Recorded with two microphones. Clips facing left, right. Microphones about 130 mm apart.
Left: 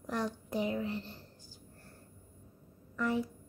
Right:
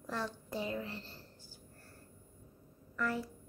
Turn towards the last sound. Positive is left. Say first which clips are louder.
# left 4 dB
turn(degrees=20)  # may be behind; listen again after turning